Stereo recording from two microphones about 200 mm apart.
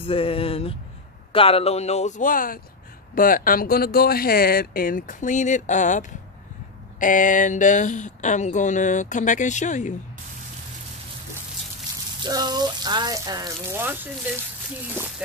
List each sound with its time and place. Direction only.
0.0 s speech: 25° left (ahead or behind)
12.2 s speech: 20° right (ahead or behind)